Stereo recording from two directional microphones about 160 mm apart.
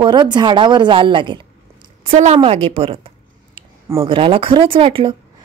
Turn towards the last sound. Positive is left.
turn(degrees=-35)  # may be behind; listen again after turning